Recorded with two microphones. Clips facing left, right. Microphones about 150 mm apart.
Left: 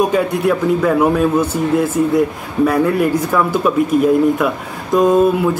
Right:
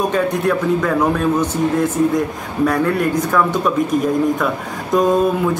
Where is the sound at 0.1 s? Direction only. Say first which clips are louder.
Left 2 dB; 10° left (ahead or behind).